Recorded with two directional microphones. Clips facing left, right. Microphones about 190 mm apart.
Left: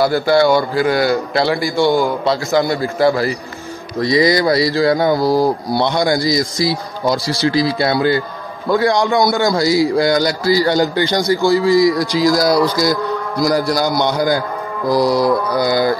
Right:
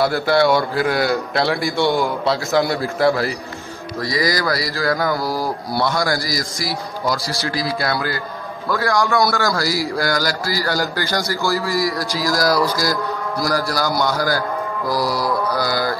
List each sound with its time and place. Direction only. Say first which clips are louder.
0.0 s speech: left 3 dB; centre (ahead or behind)
4.0 s a man's voice: left 7 dB; 25° left (ahead or behind)